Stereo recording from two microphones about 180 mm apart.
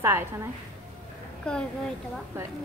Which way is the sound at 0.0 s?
15° right (ahead or behind).